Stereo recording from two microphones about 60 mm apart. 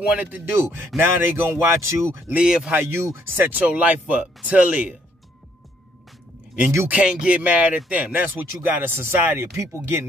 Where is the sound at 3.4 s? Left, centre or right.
Right.